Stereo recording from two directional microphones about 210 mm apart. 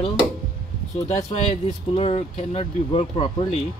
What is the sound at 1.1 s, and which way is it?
Speech, 35° left (ahead or behind).